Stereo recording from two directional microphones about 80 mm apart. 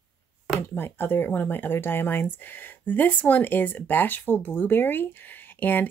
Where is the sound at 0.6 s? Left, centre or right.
Left.